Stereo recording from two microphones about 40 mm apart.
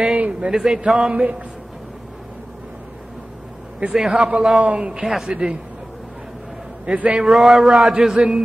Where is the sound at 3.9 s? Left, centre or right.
Centre.